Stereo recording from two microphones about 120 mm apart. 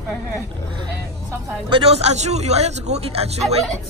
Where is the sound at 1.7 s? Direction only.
55° right (ahead or behind).